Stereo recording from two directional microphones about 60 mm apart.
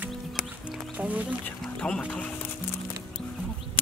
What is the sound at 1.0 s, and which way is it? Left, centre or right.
Speech, right.